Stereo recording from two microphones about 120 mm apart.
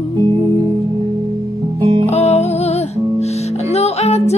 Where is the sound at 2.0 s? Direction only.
65° left (ahead or behind).